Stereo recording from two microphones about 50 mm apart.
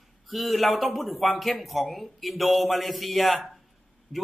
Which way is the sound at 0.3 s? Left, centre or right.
Centre.